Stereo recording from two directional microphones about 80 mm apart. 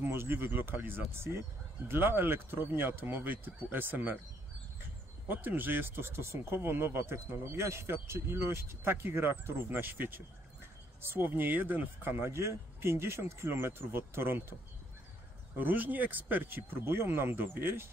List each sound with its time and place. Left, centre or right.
0.0 s speech: right
5.3 s speech: right
15.5 s speech: right